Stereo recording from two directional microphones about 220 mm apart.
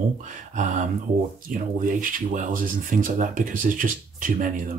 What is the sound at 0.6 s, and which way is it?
Speech, 35° right (ahead or behind).